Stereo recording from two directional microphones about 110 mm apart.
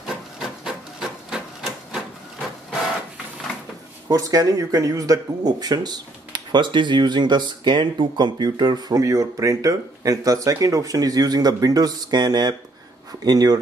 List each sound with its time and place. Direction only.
0.0 s wood: 5° right (ahead or behind)
1.3 s a sound: 5° right (ahead or behind)
4.1 s speech: 35° right (ahead or behind)